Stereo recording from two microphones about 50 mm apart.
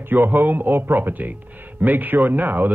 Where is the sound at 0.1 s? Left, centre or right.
Right.